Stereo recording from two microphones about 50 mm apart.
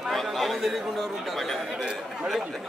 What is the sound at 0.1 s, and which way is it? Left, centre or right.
Chatter, centre.